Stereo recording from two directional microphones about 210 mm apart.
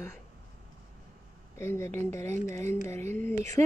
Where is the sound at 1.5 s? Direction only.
10° left (ahead or behind).